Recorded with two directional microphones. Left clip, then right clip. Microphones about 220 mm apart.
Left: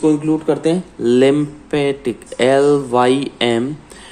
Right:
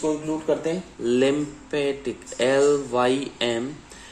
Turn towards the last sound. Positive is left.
turn(degrees=20)  # may be behind; listen again after turning